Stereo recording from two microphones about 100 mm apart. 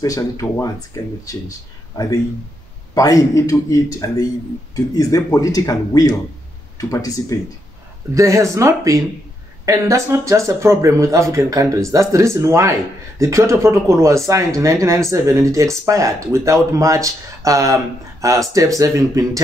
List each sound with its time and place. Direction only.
0.0 s a man's voice: 35° left (ahead or behind)
2.9 s a man's voice: 35° left (ahead or behind)
8.1 s speech: 30° right (ahead or behind)